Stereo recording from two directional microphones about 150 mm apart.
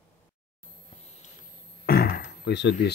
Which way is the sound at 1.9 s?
80° left.